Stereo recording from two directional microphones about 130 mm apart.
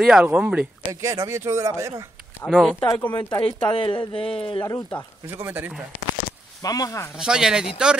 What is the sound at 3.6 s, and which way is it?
Speech, 40° left (ahead or behind).